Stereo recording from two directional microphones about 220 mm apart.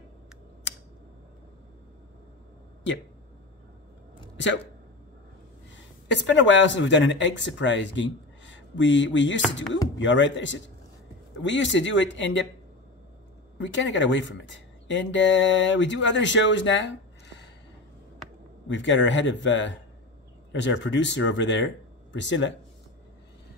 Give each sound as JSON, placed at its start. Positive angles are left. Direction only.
{"t": 6.0, "sound": "speech", "side_deg": 55}
{"t": 13.6, "sound": "speech", "side_deg": 55}
{"t": 18.7, "sound": "speech", "side_deg": 55}